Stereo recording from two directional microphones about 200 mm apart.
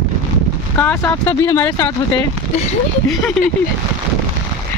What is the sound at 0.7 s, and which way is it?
Speech, 10° left (ahead or behind).